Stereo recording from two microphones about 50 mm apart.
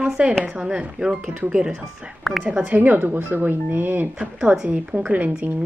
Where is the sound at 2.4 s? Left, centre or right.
Right.